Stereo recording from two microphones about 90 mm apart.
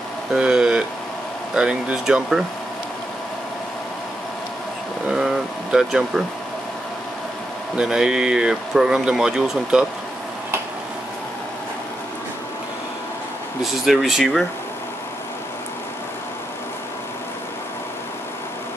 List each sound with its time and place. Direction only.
0.3 s speech: 10° right (ahead or behind)
5.0 s speech: 5° right (ahead or behind)
7.7 s speech: 10° right (ahead or behind)
13.6 s speech: 5° right (ahead or behind)